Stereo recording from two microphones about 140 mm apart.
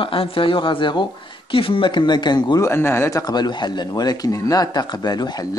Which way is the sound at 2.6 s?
15° left (ahead or behind).